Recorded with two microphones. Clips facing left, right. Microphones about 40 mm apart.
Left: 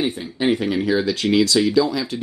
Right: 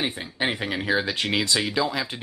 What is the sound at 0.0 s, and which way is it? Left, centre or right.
Speech, centre.